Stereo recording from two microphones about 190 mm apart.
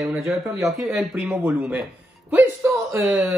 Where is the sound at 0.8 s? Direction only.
5° right (ahead or behind).